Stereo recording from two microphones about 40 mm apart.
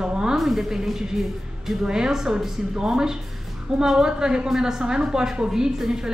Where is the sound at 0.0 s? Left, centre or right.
Centre.